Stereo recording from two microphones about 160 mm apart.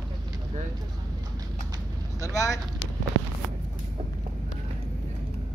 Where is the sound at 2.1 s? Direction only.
20° left (ahead or behind).